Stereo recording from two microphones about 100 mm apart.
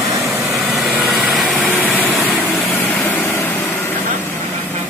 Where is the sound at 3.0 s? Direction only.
15° left (ahead or behind).